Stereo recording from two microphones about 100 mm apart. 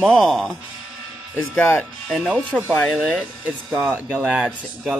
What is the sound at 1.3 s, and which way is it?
Speech, 15° left (ahead or behind).